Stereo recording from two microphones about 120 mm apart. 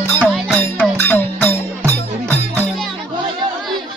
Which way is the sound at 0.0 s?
15° left (ahead or behind).